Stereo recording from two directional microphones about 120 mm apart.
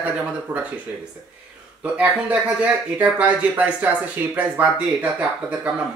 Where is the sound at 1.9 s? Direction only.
10° right (ahead or behind).